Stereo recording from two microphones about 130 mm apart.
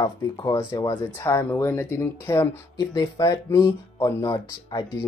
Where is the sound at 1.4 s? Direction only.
20° left (ahead or behind).